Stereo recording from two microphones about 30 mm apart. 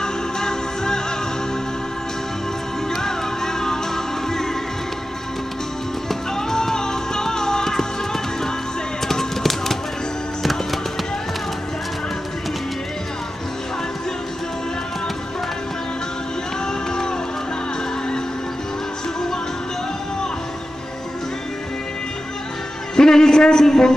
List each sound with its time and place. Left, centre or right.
0.0 s music: left
2.9 s music: centre
6.0 s music: centre
22.9 s music: left
23.6 s a sound: centre